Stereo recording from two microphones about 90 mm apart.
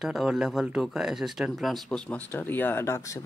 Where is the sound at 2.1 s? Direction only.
20° left (ahead or behind).